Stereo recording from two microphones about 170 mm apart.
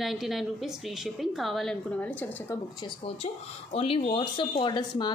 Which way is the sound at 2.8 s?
35° left (ahead or behind).